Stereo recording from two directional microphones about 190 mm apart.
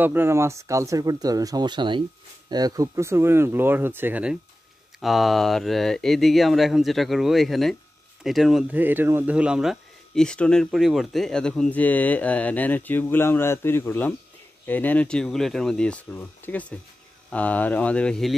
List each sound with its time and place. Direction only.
0.0 s speech: 10° right (ahead or behind); by 18.3 s 5° left (ahead or behind)